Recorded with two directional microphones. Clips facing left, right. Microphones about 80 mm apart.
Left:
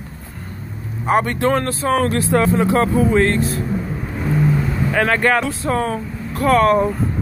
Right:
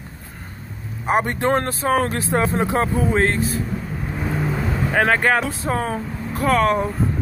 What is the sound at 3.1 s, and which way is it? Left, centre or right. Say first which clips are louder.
Speech: left 3 dB; centre.